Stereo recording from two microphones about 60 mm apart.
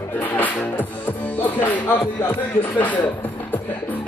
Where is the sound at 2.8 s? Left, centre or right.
Left.